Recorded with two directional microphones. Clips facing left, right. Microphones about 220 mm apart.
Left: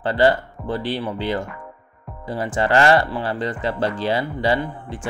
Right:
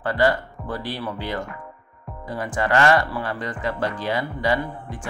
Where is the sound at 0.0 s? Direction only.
30° left (ahead or behind).